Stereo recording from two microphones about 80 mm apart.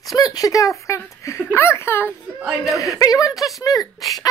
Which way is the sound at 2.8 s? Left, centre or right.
Left.